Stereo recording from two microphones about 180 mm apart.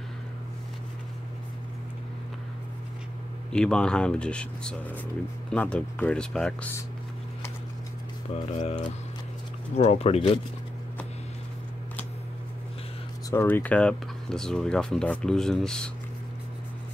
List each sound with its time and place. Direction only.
3.5 s speech: 5° left (ahead or behind)
8.5 s speech: 40° left (ahead or behind)
13.3 s speech: 10° left (ahead or behind)